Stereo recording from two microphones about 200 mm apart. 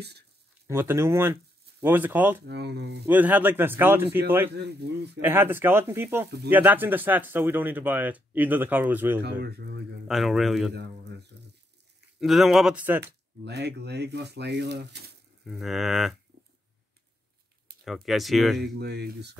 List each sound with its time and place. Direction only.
0.7 s speech: 10° right (ahead or behind)
2.4 s speech: 55° right (ahead or behind)
3.1 s speech: 10° right (ahead or behind)
4.6 s speech: 55° right (ahead or behind)
5.2 s speech: 10° right (ahead or behind)
9.2 s speech: 55° right (ahead or behind)
10.0 s speech: centre (ahead or behind)
10.7 s speech: 60° right (ahead or behind)
12.2 s speech: centre (ahead or behind)
13.0 s speech: 55° right (ahead or behind)
15.4 s speech: centre (ahead or behind)
17.8 s speech: centre (ahead or behind)
18.8 s speech: 55° right (ahead or behind)